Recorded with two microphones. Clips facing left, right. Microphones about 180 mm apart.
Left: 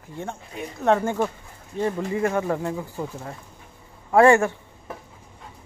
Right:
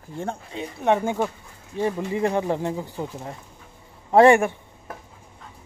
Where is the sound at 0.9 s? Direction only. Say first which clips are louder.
Left 1 dB; 15° right (ahead or behind).